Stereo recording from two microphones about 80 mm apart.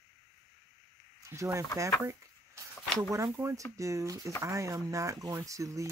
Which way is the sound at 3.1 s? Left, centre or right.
Right.